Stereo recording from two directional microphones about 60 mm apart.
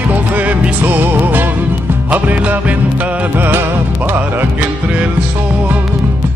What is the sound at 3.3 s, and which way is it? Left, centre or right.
Music, right.